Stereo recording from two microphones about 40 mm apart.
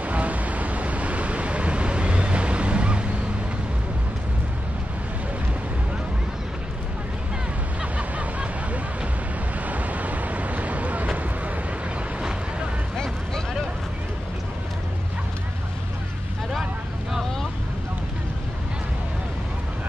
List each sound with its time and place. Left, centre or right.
0.0 s waves: right
7.8 s waves: right
9.7 s vehicle: right
12.9 s a sound: centre